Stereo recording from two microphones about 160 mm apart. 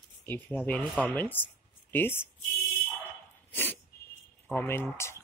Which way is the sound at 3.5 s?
10° left (ahead or behind).